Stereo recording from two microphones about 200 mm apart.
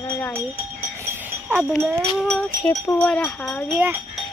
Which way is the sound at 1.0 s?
10° right (ahead or behind).